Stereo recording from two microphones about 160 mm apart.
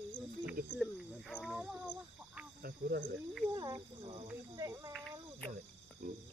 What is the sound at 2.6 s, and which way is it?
Cricket, 70° right (ahead or behind).